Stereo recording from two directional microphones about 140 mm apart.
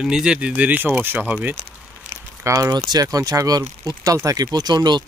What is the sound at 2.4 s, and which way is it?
Speech, 25° right (ahead or behind).